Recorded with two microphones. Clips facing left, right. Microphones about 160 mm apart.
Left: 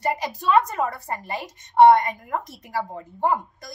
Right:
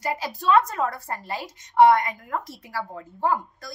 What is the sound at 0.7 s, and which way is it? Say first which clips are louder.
A woman's voice: left 1 dB; 15° left (ahead or behind).